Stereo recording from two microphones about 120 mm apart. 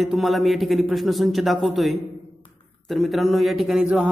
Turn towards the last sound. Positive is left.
turn(degrees=0)  # may be behind; listen again after turning